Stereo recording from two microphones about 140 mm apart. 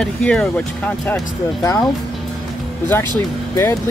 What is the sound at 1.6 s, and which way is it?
Speech, 25° left (ahead or behind).